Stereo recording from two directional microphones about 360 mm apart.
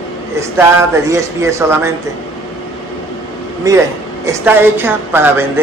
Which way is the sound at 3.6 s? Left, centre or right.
Centre.